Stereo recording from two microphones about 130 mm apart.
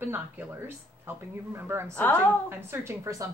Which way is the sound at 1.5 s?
20° right (ahead or behind).